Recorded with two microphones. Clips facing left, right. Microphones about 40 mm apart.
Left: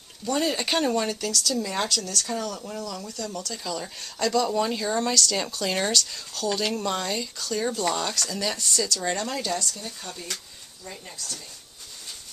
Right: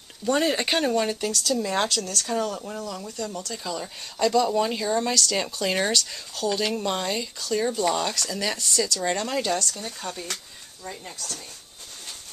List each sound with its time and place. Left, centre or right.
0.2 s speech: right
0.7 s speech: centre
1.2 s speech: right; by 10.2 s centre
10.9 s speech: right